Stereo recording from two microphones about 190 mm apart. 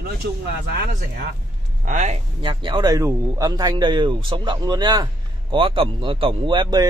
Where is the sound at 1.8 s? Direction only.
40° right (ahead or behind).